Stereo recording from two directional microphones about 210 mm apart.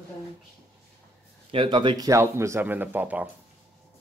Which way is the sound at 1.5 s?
25° right (ahead or behind).